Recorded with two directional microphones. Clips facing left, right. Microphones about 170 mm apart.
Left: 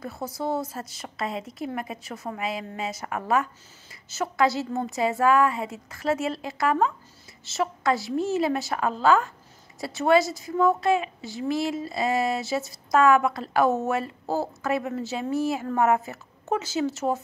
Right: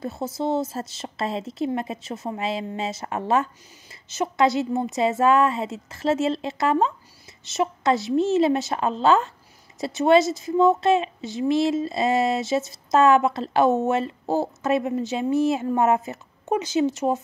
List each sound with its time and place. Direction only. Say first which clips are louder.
0.0 s a woman's voice: right 4 dB; 25° right (ahead or behind)